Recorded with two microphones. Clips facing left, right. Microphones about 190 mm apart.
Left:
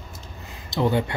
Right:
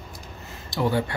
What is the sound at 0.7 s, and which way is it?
Speech, 20° left (ahead or behind).